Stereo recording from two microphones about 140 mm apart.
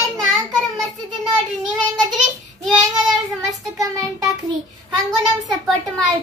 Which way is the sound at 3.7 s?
25° right (ahead or behind).